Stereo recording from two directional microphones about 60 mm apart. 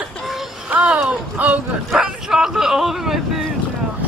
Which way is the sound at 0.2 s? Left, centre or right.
Centre.